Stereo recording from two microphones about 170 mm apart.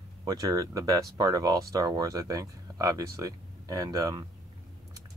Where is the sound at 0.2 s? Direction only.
20° right (ahead or behind).